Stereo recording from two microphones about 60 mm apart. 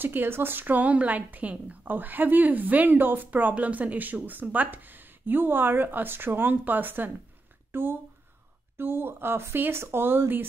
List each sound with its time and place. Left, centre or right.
0.0 s a woman's voice: right